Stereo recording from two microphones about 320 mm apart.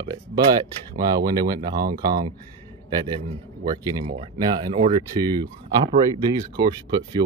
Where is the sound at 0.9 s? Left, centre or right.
Centre.